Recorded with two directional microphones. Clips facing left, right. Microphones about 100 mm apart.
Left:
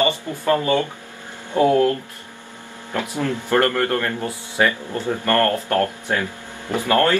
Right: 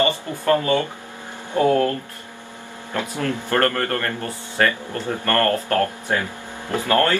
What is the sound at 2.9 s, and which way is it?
Speech, 15° left (ahead or behind).